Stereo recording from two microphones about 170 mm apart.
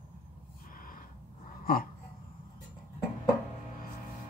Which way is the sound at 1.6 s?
60° left (ahead or behind).